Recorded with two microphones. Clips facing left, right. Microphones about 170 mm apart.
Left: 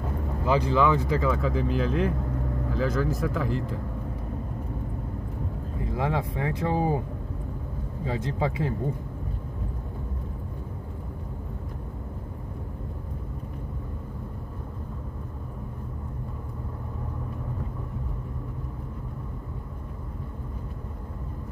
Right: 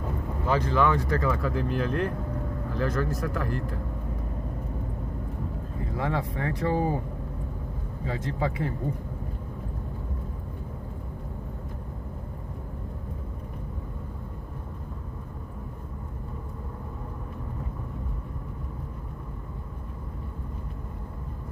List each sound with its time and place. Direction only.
0.5 s speech: 5° left (ahead or behind)
5.9 s speech: 20° left (ahead or behind)
8.0 s speech: 25° left (ahead or behind)